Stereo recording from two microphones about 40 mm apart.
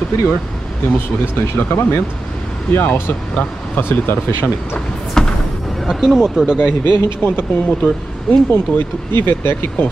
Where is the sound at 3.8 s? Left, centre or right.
Left.